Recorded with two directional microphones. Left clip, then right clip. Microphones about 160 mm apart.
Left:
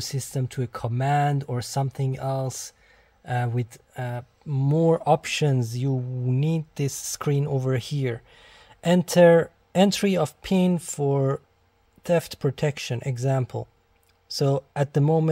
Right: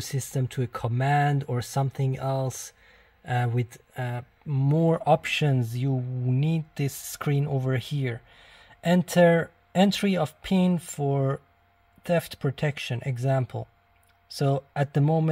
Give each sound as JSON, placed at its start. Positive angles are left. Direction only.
{"t": 0.3, "sound": "speech", "side_deg": -10}
{"t": 4.5, "sound": "speech", "side_deg": 5}